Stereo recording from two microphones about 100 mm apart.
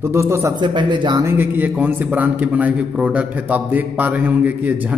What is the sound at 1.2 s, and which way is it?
A man's voice, 20° right (ahead or behind).